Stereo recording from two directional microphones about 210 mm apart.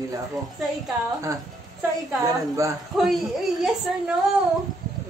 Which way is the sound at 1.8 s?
15° right (ahead or behind).